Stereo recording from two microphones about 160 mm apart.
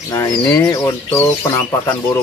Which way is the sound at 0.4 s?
15° left (ahead or behind).